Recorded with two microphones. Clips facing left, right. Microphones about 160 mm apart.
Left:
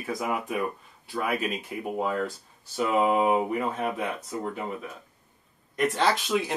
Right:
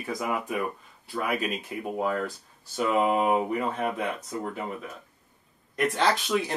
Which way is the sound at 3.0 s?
15° left (ahead or behind).